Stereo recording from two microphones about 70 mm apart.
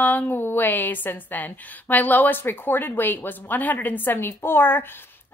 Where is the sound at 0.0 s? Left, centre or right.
Left.